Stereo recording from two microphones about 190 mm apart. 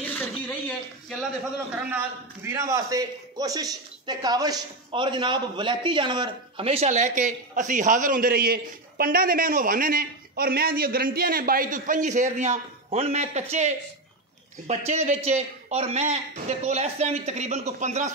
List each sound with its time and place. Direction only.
0.0 s a sound: 10° left (ahead or behind)
1.8 s a man's voice: 10° right (ahead or behind); by 13.7 s 35° right (ahead or behind)
14.9 s a man's voice: 35° right (ahead or behind)